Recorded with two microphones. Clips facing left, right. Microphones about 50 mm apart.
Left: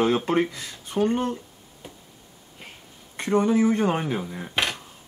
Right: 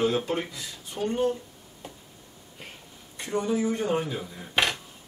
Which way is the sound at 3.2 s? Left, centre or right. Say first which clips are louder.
Left 6 dB; left.